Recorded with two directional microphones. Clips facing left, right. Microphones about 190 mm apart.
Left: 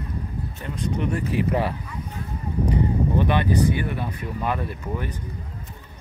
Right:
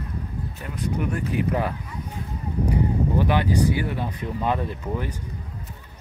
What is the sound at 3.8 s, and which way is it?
Speech, 15° right (ahead or behind).